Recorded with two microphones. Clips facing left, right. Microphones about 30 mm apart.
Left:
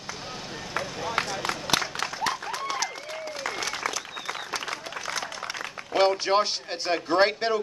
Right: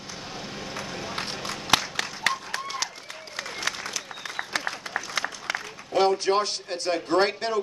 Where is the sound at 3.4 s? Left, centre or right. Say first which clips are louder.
Left 1 dB; left.